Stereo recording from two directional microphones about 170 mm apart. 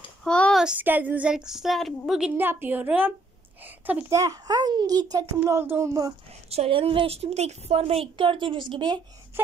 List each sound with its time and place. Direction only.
0.2 s a child's voice: 5° left (ahead or behind); by 6.1 s 20° right (ahead or behind)
6.5 s a woman's voice: 35° right (ahead or behind)